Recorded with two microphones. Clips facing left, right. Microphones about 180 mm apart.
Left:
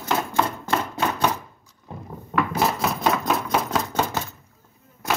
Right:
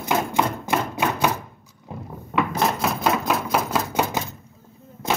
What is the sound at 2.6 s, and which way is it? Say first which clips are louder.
Chopping: even; centre (ahead or behind).